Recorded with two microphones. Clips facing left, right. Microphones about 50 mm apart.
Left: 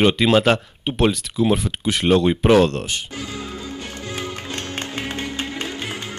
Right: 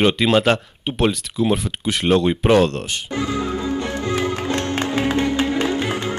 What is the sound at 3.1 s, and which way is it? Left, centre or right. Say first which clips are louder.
Music: right 8 dB; right.